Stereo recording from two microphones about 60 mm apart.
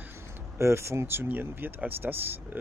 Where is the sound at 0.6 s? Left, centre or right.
Right.